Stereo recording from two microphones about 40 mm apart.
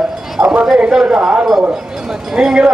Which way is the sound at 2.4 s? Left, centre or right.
Centre.